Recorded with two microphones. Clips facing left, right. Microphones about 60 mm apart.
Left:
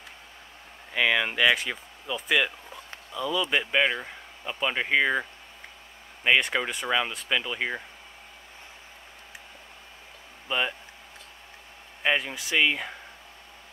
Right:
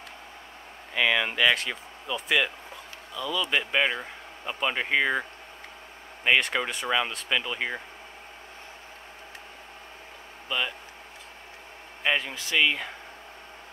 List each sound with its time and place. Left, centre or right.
0.9 s speech: centre
3.2 s speech: centre
6.2 s speech: centre
10.5 s speech: centre
12.0 s speech: centre